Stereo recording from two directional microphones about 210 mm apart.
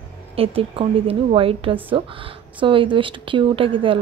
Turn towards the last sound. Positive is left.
turn(degrees=-25)  # may be behind; listen again after turning